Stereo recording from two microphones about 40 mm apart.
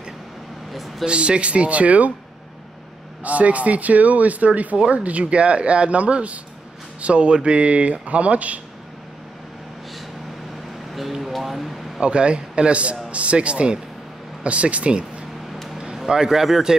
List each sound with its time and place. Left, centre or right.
1.0 s speech: right
3.3 s speech: right
11.0 s speech: centre
12.0 s speech: right
15.5 s vehicle: centre
16.1 s speech: centre